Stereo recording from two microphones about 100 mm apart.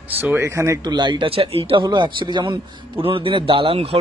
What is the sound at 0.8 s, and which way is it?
Speech, 45° right (ahead or behind).